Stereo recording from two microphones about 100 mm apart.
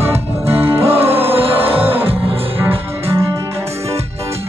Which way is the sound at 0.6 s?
20° right (ahead or behind).